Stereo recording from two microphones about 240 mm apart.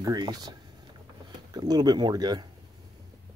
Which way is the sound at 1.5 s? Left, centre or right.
Centre.